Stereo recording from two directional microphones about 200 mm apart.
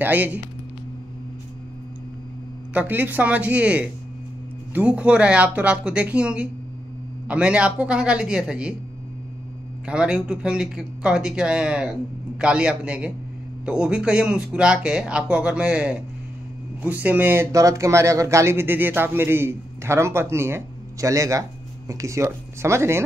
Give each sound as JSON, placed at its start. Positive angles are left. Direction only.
{"t": 0.0, "sound": "speech", "side_deg": -10}
{"t": 2.7, "sound": "speech", "side_deg": -10}
{"t": 9.8, "sound": "speech", "side_deg": -5}